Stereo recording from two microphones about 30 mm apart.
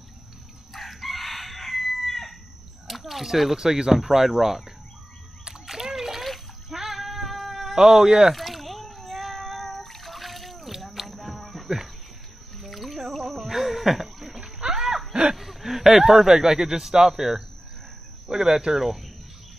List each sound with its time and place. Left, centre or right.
0.7 s chicken: centre
2.9 s speech: centre
3.5 s speech: centre
5.7 s splash: centre
6.7 s cat: centre
7.7 s speech: right
8.4 s a sound: centre
8.9 s cat: centre
10.7 s a sound: centre
12.5 s music: centre
13.4 s boat: centre
14.8 s a sound: centre
15.3 s speech: centre